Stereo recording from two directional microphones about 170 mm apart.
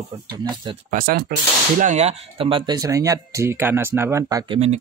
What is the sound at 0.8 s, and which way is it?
Speech, 55° right (ahead or behind).